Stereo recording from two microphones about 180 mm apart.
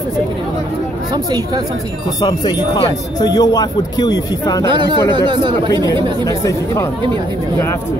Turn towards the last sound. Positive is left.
turn(degrees=15)  # may be behind; listen again after turning